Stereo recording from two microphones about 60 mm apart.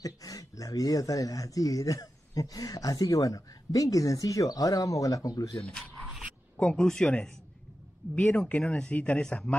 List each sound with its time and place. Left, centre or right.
0.0 s speech: left
6.5 s speech: centre
9.2 s speech: centre